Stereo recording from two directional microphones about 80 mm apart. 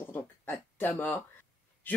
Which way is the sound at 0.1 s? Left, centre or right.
Left.